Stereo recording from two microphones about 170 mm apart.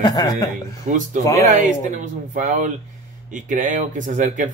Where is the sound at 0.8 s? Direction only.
50° right (ahead or behind).